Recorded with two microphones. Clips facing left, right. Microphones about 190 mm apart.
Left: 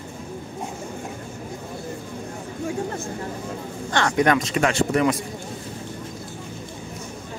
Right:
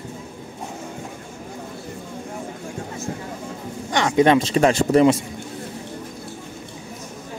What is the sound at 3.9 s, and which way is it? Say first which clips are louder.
Speech: right 4 dB; 15° right (ahead or behind).